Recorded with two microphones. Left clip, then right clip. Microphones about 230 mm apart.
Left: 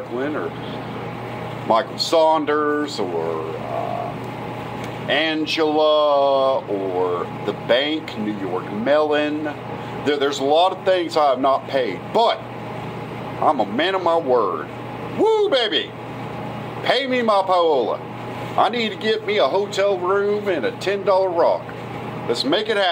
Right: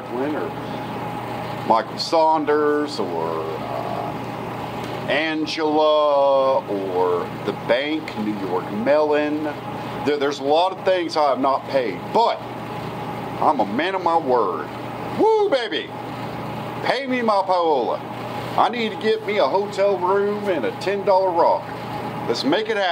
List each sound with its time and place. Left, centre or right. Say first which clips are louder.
1.7 s speech: left 1 dB; centre
5.0 s speech: left 2 dB; centre
13.5 s speech: left 1 dB; centre
16.8 s speech: left 2 dB; centre